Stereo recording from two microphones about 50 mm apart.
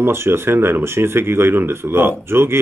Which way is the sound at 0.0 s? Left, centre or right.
Right.